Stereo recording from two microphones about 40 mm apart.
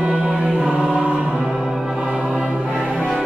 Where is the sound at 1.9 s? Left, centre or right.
Centre.